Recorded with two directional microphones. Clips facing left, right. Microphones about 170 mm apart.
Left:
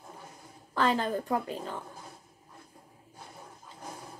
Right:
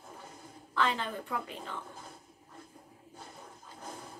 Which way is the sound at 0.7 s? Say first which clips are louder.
Left 5 dB; 40° left (ahead or behind).